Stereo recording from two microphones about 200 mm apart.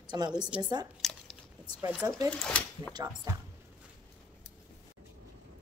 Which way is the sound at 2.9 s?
20° right (ahead or behind).